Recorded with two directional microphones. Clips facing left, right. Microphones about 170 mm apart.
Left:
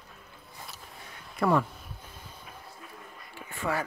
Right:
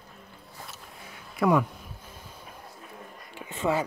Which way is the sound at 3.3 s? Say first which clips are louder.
Right 5 dB; 20° right (ahead or behind).